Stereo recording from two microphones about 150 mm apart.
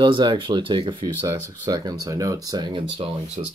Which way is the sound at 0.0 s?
30° right (ahead or behind).